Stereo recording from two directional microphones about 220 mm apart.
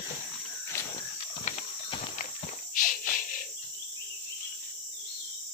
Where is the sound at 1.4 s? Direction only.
30° left (ahead or behind).